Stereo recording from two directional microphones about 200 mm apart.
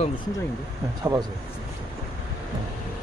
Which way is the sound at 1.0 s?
20° right (ahead or behind).